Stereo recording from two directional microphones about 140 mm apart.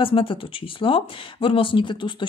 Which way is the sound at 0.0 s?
40° left (ahead or behind).